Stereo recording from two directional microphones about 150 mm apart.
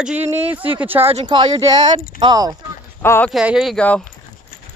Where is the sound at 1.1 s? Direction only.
35° right (ahead or behind).